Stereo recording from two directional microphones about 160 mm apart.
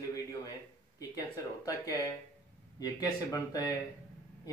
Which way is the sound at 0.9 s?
20° left (ahead or behind).